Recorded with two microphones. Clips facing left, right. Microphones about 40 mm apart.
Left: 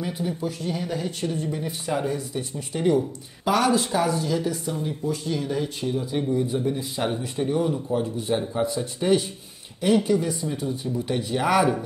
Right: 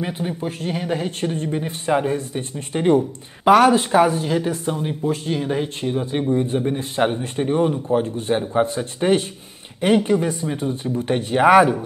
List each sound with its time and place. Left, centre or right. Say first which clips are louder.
0.0 s a man's voice: right 3 dB; right